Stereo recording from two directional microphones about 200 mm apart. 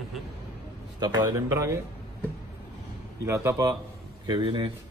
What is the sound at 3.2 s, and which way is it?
A man's voice, 15° right (ahead or behind).